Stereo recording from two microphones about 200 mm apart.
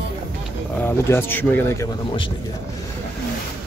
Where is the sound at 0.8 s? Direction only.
10° left (ahead or behind).